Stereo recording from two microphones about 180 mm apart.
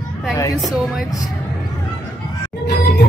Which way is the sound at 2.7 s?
55° left (ahead or behind).